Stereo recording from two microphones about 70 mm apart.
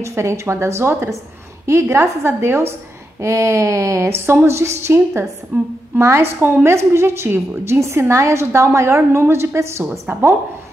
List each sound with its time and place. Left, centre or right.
0.0 s speech: right
8.5 s speech: right